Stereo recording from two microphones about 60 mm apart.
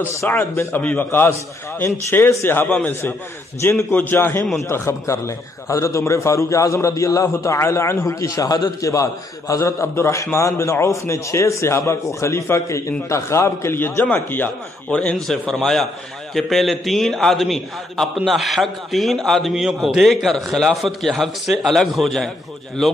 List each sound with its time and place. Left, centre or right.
0.2 s a man's voice: left
2.4 s a man's voice: left
3.9 s a man's voice: left
4.6 s a man's voice: left
13.7 s a man's voice: left
14.9 s a man's voice: left
15.5 s a man's voice: centre
19.5 s a man's voice: centre